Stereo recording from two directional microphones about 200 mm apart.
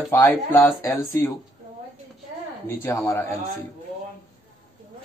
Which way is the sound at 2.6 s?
15° left (ahead or behind).